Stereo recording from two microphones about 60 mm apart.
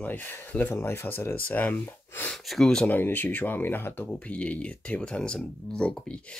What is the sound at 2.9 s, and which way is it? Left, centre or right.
Speech, left.